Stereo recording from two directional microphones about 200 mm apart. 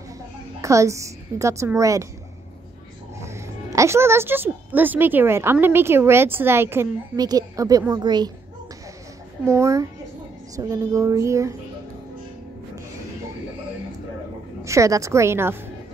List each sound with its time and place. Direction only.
0.6 s a woman's voice: 15° right (ahead or behind)
3.2 s a woman's voice: 15° right (ahead or behind)
9.5 s a woman's voice: 15° right (ahead or behind)
14.6 s a woman's voice: 15° right (ahead or behind)